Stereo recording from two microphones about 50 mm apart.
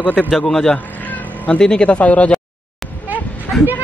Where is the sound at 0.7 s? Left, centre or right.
Left.